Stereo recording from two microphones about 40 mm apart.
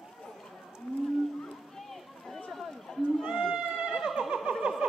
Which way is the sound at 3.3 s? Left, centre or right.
Centre.